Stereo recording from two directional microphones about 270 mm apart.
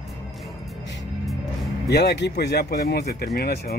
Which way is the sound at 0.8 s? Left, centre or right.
Left.